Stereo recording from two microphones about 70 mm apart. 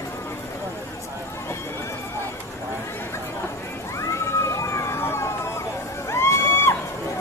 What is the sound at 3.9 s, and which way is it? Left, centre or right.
Emergency vehicle, left.